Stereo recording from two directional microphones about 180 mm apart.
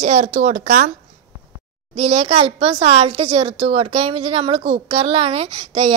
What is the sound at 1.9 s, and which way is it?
Speech, 35° right (ahead or behind).